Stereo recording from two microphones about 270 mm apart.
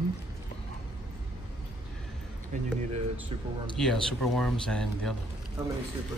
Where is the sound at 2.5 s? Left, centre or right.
Right.